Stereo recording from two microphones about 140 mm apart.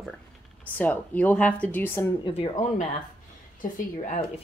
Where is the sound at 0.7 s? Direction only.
10° left (ahead or behind).